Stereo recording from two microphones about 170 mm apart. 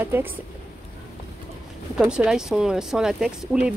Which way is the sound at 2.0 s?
5° right (ahead or behind).